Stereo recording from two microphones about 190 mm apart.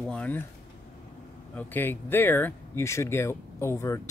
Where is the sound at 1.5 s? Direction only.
10° left (ahead or behind).